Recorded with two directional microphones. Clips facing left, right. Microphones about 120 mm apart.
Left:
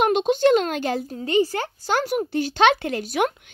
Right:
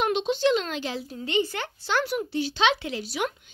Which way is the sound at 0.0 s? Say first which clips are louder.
Left 5 dB; 50° left (ahead or behind).